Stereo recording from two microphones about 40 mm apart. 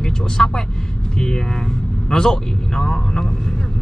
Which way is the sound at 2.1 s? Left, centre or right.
Centre.